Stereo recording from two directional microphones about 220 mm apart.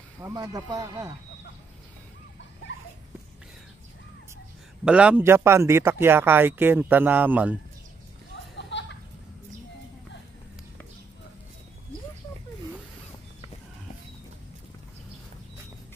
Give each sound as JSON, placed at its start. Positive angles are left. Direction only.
{"t": 0.2, "sound": "speech", "side_deg": -15}
{"t": 4.8, "sound": "speech", "side_deg": -5}
{"t": 8.5, "sound": "a sound", "side_deg": 55}